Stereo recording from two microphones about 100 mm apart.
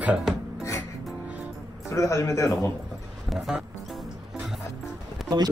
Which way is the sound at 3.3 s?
Centre (ahead or behind).